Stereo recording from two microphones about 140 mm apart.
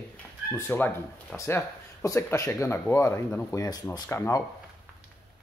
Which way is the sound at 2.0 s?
20° left (ahead or behind).